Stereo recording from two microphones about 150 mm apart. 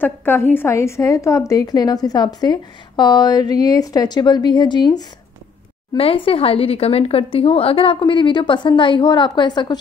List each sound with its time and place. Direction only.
0.0 s a woman's voice: 15° left (ahead or behind); by 9.8 s 30° left (ahead or behind)